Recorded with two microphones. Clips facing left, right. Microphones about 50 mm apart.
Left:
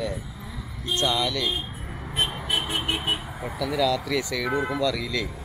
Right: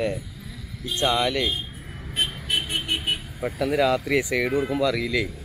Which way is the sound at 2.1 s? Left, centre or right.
Centre.